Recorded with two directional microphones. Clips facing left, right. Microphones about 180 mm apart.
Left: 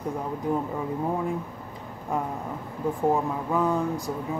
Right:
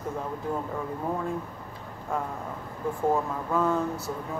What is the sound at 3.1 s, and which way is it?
Speech, 15° left (ahead or behind).